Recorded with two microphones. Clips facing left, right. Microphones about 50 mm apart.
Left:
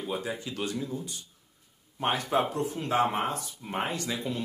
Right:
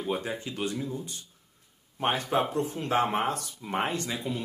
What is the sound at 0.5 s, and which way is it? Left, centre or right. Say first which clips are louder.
Speech: right 1 dB; centre.